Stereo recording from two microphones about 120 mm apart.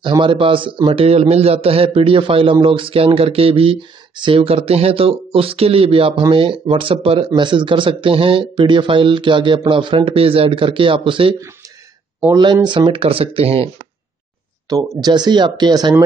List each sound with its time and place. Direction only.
0.0 s a man's voice: 40° right (ahead or behind)
12.6 s a man's voice: 40° right (ahead or behind)
14.7 s speech: 30° right (ahead or behind)